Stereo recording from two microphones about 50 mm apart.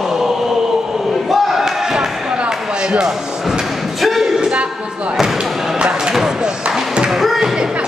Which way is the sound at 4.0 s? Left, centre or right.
Centre.